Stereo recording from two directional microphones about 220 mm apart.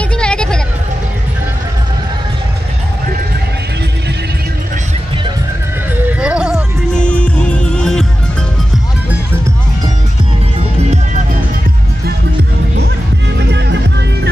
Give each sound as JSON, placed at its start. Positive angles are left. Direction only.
{"t": 0.2, "sound": "vehicle", "side_deg": 5}
{"t": 6.0, "sound": "music", "side_deg": -5}
{"t": 10.8, "sound": "music", "side_deg": -30}
{"t": 13.4, "sound": "music", "side_deg": -50}